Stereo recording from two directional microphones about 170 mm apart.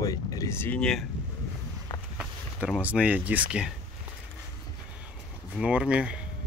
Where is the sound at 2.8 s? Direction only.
10° right (ahead or behind).